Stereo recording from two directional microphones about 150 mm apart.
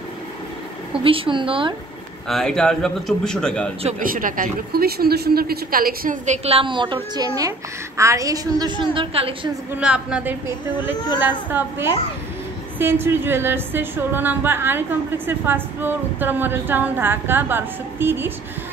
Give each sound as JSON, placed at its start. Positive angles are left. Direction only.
{"t": 1.0, "sound": "a woman's voice", "side_deg": -35}
{"t": 2.2, "sound": "a man's voice", "side_deg": 5}
{"t": 4.0, "sound": "a woman's voice", "side_deg": -70}
{"t": 6.2, "sound": "a woman's voice", "side_deg": -45}
{"t": 9.8, "sound": "a woman's voice", "side_deg": -5}